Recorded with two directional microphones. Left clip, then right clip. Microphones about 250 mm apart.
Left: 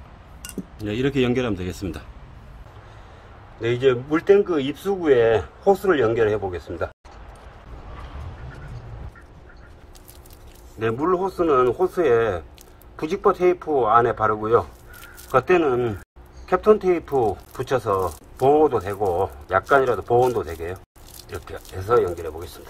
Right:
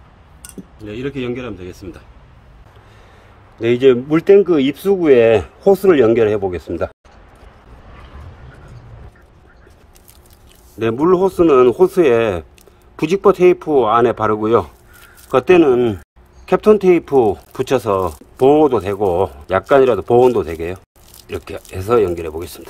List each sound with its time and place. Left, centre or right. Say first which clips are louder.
0.7 s a man's voice: left 3 dB; left
3.6 s speech: right 8 dB; right
10.8 s speech: right 8 dB; right